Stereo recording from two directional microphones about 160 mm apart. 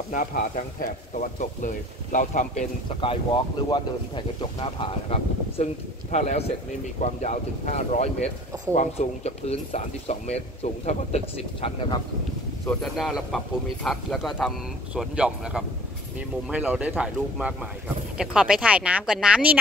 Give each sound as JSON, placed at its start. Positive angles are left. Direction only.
{"t": 0.1, "sound": "speech", "side_deg": 55}
{"t": 3.0, "sound": "speech", "side_deg": 30}
{"t": 12.6, "sound": "speech", "side_deg": 0}